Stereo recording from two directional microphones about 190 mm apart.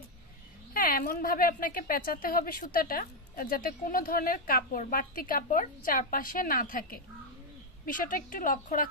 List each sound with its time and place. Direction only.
0.7 s a woman's voice: 50° left (ahead or behind)